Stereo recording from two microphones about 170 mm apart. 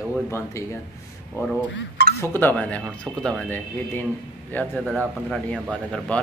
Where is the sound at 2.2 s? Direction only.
10° left (ahead or behind).